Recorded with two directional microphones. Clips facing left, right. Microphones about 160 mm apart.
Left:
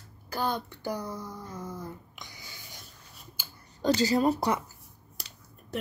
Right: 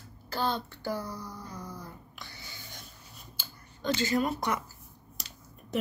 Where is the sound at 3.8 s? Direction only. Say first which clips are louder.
Left 4 dB; 40° left (ahead or behind).